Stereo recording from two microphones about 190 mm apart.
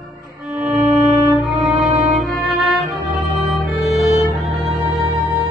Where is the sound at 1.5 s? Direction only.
Centre (ahead or behind).